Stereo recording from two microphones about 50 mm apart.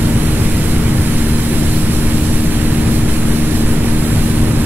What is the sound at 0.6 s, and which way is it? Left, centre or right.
Vehicle, right.